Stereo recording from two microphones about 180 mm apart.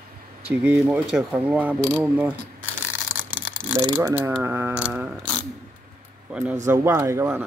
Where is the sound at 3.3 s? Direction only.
10° right (ahead or behind).